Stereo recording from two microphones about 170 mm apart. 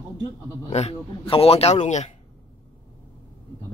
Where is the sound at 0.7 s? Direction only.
35° left (ahead or behind).